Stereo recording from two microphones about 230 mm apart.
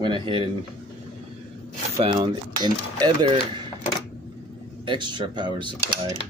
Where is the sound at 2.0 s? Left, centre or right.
Centre.